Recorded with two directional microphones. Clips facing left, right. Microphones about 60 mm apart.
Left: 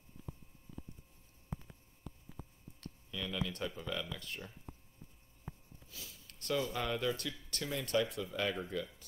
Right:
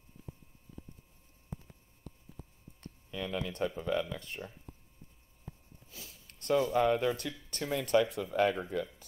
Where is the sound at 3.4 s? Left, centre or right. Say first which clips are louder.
Right 7 dB; right.